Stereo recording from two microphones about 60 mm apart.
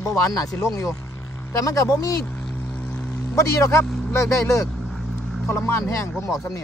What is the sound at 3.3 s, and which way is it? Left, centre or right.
Speech, left.